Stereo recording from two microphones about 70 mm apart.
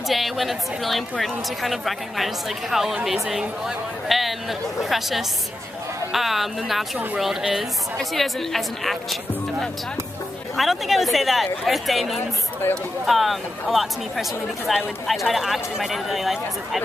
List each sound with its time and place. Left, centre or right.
0.1 s speech: centre
12.6 s speech: left
13.0 s speech: centre